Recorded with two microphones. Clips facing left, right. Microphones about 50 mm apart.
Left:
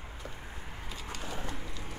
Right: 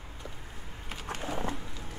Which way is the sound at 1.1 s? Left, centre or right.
Right.